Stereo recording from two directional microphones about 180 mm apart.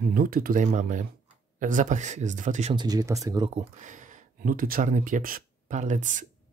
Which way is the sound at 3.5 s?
45° right (ahead or behind).